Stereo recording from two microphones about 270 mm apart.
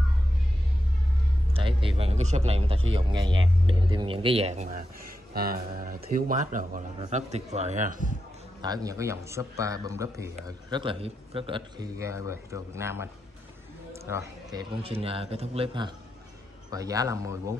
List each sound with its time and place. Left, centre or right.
1.5 s a man's voice: centre
8.6 s speech: centre
14.1 s a man's voice: centre